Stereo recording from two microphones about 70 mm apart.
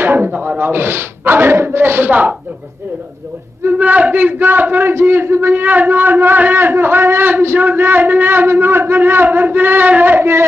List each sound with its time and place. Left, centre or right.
0.2 s a man's voice: right
3.6 s a man's voice: right